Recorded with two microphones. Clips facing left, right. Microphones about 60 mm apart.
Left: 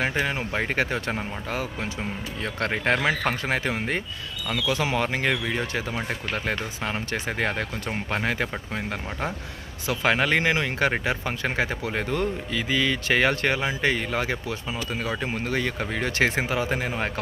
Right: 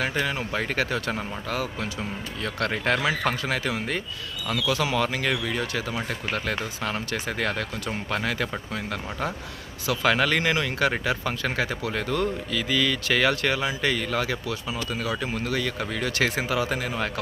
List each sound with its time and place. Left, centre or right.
0.0 s speech: left